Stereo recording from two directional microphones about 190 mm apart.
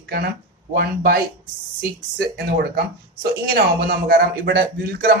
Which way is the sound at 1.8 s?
55° right (ahead or behind).